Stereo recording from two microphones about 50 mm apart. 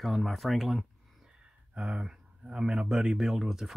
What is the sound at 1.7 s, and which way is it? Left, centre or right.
Speech, centre.